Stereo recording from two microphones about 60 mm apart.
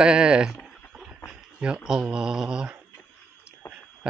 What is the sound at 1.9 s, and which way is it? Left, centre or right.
Speech, centre.